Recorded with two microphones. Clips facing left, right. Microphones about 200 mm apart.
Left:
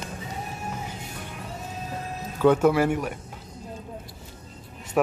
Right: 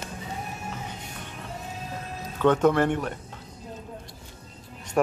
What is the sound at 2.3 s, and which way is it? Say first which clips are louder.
Speech: left 1 dB; 10° left (ahead or behind).